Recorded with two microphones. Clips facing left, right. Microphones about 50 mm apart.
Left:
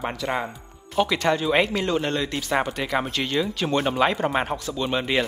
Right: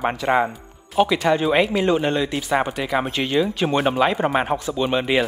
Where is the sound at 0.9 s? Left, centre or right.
Centre.